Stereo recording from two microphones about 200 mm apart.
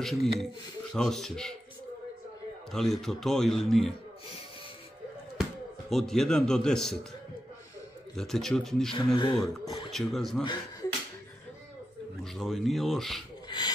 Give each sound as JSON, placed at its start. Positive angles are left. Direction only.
{"t": 0.0, "sound": "a man's voice", "side_deg": 0}
{"t": 2.7, "sound": "a man's voice", "side_deg": 0}
{"t": 5.9, "sound": "a man's voice", "side_deg": 0}
{"t": 8.2, "sound": "a man's voice", "side_deg": 0}
{"t": 8.9, "sound": "speech", "side_deg": 25}
{"t": 9.7, "sound": "speech", "side_deg": 0}
{"t": 10.4, "sound": "speech", "side_deg": 20}
{"t": 12.4, "sound": "a man's voice", "side_deg": 0}